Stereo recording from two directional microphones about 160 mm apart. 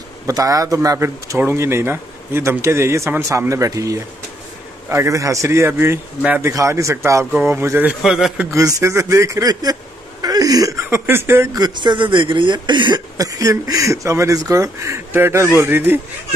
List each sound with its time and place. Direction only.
0.3 s speech: 20° right (ahead or behind); by 8.5 s centre (ahead or behind)
8.5 s speech: 20° right (ahead or behind)